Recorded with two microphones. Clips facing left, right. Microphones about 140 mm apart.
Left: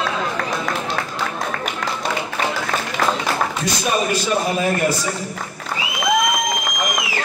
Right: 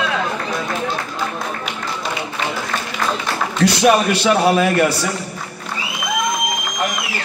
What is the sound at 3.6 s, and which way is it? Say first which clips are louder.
A man's voice: right 7 dB; 70° right (ahead or behind).